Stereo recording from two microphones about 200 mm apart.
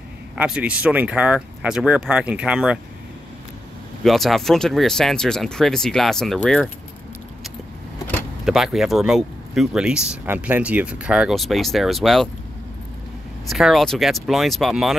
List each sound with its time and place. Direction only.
0.4 s speech: 5° right (ahead or behind)
4.0 s speech: centre (ahead or behind)
8.5 s speech: centre (ahead or behind)
13.5 s speech: centre (ahead or behind)